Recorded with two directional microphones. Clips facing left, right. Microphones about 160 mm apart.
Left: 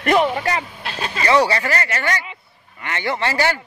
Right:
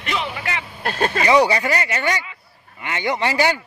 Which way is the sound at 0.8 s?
50° right (ahead or behind).